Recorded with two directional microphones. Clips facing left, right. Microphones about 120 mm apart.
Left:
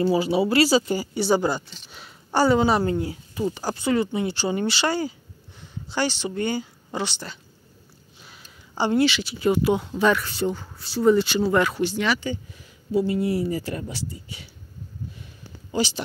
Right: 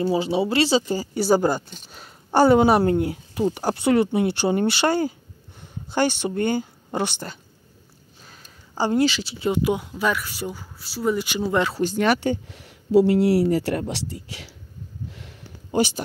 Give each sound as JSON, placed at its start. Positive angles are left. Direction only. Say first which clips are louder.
{"t": 0.0, "sound": "speech", "louder": "left 1 dB", "side_deg": -25}
{"t": 8.2, "sound": "speech", "louder": "even", "side_deg": -40}
{"t": 11.7, "sound": "speech", "louder": "right 3 dB", "side_deg": -45}
{"t": 15.0, "sound": "a sound", "louder": "right 1 dB", "side_deg": -75}